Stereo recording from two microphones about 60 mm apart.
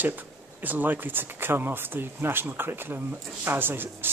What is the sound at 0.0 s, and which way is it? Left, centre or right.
Speech, right.